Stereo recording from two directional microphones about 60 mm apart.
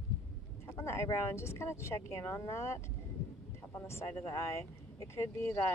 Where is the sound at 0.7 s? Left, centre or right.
Left.